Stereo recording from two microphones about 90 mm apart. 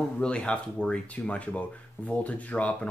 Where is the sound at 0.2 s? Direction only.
10° left (ahead or behind).